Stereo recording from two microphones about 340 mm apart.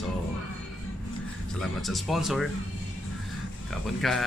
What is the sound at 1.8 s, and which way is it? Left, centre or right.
Speech, centre.